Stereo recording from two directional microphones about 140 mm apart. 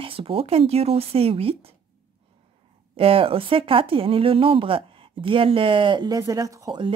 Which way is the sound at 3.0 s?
40° right (ahead or behind).